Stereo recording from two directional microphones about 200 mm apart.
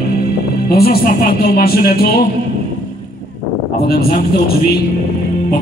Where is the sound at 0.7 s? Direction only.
50° left (ahead or behind).